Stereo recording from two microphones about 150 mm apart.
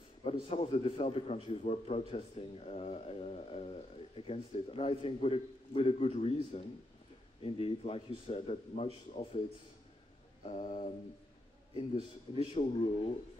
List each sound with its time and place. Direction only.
0.2 s a man's voice: 40° left (ahead or behind)
10.4 s a sound: 45° left (ahead or behind)
12.4 s a man's voice: 40° left (ahead or behind)